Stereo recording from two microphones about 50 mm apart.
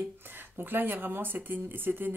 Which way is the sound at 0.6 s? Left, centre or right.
Right.